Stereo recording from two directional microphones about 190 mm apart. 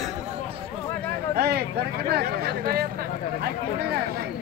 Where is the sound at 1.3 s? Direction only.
55° right (ahead or behind).